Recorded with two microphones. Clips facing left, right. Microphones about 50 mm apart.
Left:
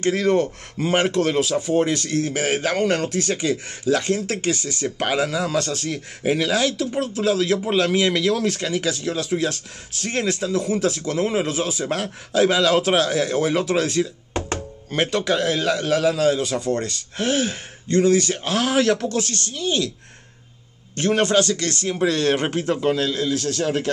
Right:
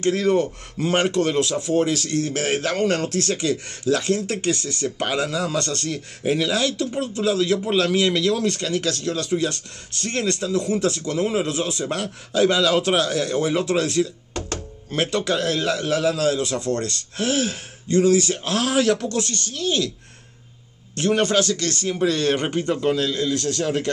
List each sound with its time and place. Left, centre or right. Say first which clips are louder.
0.0 s a man's voice: even; centre
14.3 s music: left 4 dB; left
14.9 s a man's voice: left 1 dB; centre
20.9 s a man's voice: left 1 dB; centre